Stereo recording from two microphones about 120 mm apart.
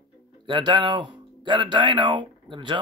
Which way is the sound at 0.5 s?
40° right (ahead or behind).